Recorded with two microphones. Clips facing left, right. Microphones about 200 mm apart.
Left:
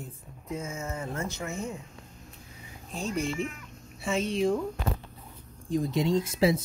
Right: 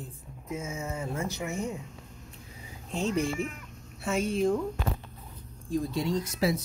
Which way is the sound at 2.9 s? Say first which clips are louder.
Right 3 dB; 20° right (ahead or behind).